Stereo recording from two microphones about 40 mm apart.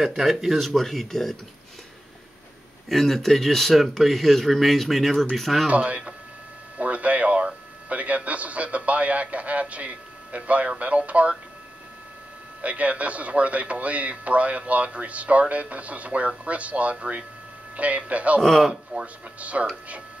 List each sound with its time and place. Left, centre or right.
0.0 s speech: centre
0.7 s speech: centre
2.9 s speech: centre
5.7 s a man's voice: right
12.6 s speech: right
18.4 s speech: centre
18.9 s speech: right